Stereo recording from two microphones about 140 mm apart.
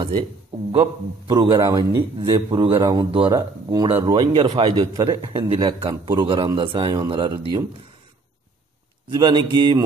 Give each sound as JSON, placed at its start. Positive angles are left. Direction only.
{"t": 0.7, "sound": "a man's voice", "side_deg": -35}
{"t": 3.3, "sound": "speech", "side_deg": -25}
{"t": 3.9, "sound": "a man's voice", "side_deg": -45}
{"t": 9.1, "sound": "a man's voice", "side_deg": -30}